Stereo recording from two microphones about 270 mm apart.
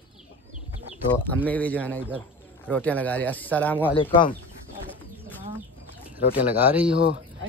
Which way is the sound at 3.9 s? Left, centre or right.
Centre.